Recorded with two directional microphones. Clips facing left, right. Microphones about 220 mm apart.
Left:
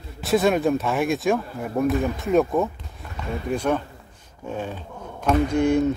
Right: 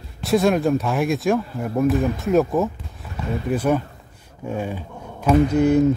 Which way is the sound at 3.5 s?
5° right (ahead or behind).